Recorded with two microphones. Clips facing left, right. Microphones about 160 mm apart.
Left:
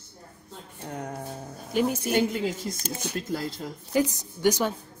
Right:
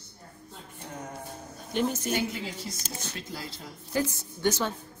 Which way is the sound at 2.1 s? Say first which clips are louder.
Left 6 dB; 55° left (ahead or behind).